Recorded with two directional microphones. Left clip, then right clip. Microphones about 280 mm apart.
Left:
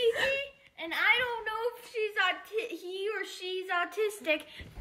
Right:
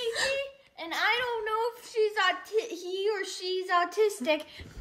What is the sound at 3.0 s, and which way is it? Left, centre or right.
Speech, right.